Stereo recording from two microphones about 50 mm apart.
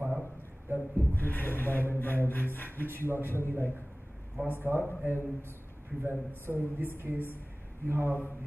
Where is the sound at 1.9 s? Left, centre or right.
Left.